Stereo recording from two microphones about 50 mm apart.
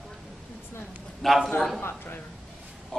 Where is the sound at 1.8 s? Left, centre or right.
Left.